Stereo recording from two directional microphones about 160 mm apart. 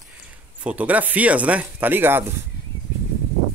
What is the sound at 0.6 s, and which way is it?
Speech, 10° right (ahead or behind).